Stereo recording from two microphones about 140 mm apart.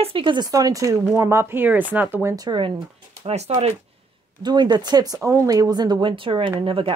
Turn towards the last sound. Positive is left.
turn(degrees=-40)  # may be behind; listen again after turning